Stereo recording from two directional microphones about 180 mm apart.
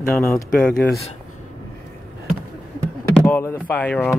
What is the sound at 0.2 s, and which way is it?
Speech, 5° left (ahead or behind).